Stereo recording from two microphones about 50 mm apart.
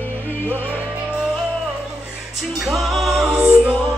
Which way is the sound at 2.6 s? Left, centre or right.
Centre.